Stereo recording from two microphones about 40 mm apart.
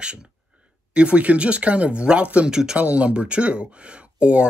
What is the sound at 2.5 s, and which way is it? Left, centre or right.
Speech, centre.